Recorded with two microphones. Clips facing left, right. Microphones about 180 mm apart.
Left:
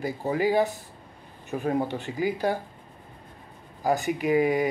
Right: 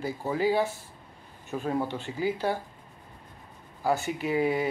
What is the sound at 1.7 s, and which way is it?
Speech, 15° left (ahead or behind).